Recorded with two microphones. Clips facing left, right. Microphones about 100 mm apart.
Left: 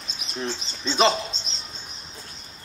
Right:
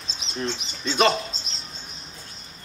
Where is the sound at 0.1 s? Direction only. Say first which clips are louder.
Right 1 dB; 30° right (ahead or behind).